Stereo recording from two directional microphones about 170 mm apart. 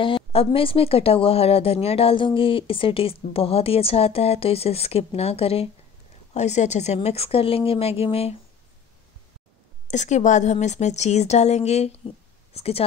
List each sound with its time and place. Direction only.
0.0 s speech: 30° left (ahead or behind)
9.8 s speech: 45° left (ahead or behind)